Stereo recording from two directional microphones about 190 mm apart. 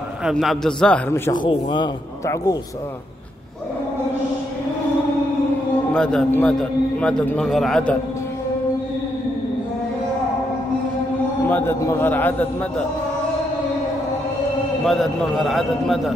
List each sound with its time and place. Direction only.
0.2 s a man's voice: centre (ahead or behind)
1.3 s a man's voice: 25° left (ahead or behind)
5.9 s a man's voice: 5° left (ahead or behind)
11.4 s a man's voice: 10° left (ahead or behind)
14.9 s a man's voice: centre (ahead or behind)